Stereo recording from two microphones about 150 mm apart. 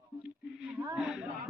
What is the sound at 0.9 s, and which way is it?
Speech, centre (ahead or behind).